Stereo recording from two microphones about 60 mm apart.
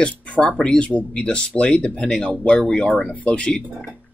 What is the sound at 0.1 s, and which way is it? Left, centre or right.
Speech, left.